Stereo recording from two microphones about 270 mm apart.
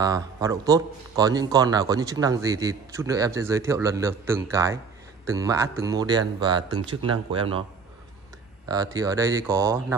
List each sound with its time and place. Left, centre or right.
0.0 s a man's voice: centre
8.6 s a man's voice: centre